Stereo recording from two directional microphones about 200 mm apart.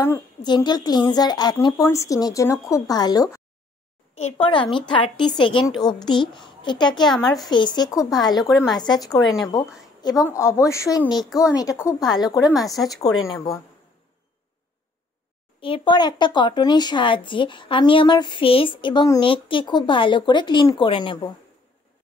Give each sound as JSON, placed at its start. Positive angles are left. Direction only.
{"t": 0.0, "sound": "speech", "side_deg": 15}
{"t": 7.1, "sound": "speech", "side_deg": 0}
{"t": 7.4, "sound": "a woman's voice", "side_deg": 20}
{"t": 12.5, "sound": "speech", "side_deg": 0}
{"t": 15.6, "sound": "speech", "side_deg": 25}